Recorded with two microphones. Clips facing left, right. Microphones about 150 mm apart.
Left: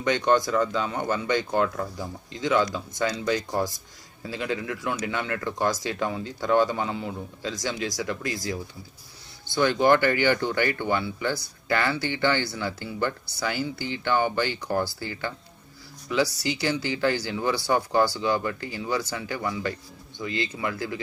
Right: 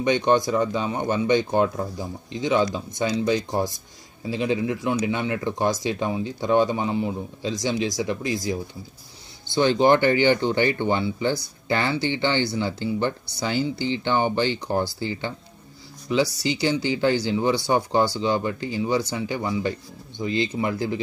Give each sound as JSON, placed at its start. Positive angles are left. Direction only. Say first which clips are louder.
{"t": 0.0, "sound": "speech", "louder": "right 2 dB", "side_deg": -20}
{"t": 9.6, "sound": "speech", "louder": "right 3 dB", "side_deg": -25}